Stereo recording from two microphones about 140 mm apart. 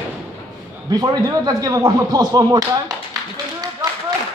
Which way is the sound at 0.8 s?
25° right (ahead or behind).